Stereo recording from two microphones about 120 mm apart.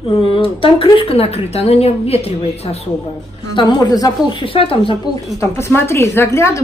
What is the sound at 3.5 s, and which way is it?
Speech, 40° left (ahead or behind).